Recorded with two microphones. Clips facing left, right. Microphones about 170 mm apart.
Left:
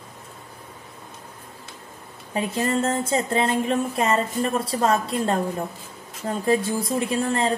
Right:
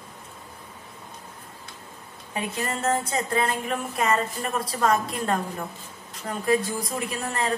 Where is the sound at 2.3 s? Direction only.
30° left (ahead or behind).